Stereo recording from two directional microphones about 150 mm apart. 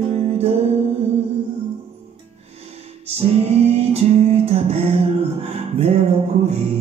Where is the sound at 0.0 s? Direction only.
40° right (ahead or behind).